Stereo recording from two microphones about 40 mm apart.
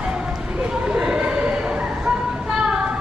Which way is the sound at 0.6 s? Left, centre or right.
Right.